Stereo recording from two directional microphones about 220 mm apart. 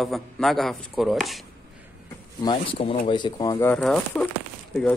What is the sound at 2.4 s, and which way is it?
Speech, 20° left (ahead or behind).